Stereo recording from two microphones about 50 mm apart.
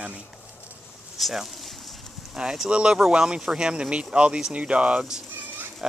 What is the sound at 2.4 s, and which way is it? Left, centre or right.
Speech, centre.